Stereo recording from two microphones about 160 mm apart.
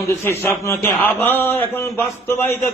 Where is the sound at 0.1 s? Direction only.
15° left (ahead or behind).